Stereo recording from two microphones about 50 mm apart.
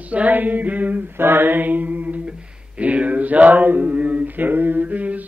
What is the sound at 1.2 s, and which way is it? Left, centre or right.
Mantra, right.